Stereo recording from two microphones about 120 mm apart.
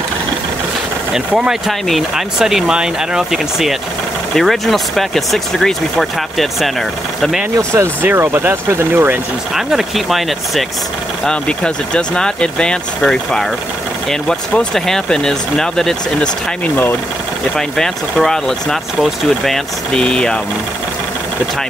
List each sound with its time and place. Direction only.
1.1 s speech: 5° right (ahead or behind)
7.5 s speech: 20° right (ahead or behind)
9.6 s speech: 5° right (ahead or behind)
17.6 s speech: 5° left (ahead or behind)